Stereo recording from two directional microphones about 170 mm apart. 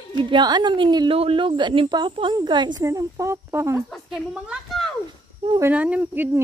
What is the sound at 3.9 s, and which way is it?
A woman's voice, centre (ahead or behind).